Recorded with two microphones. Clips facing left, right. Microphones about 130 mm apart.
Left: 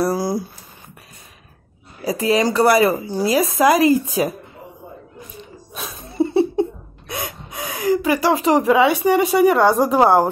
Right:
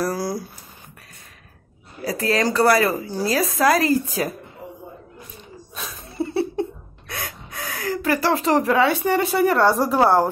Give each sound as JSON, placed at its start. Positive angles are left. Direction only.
{"t": 0.0, "sound": "a sound", "side_deg": 20}
{"t": 2.0, "sound": "speech", "side_deg": 15}
{"t": 5.8, "sound": "gasp", "side_deg": 20}